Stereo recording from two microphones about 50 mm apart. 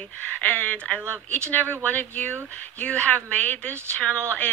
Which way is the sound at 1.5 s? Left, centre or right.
Left.